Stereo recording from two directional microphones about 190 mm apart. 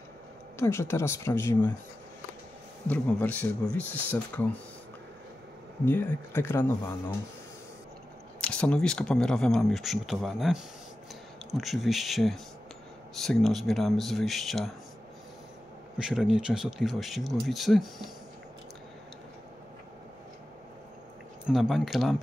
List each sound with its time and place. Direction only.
0.6 s speech: 15° left (ahead or behind)
2.9 s speech: 5° left (ahead or behind)
5.9 s speech: 10° left (ahead or behind)
8.4 s speech: 5° left (ahead or behind)
16.0 s speech: 5° right (ahead or behind)
21.5 s speech: centre (ahead or behind)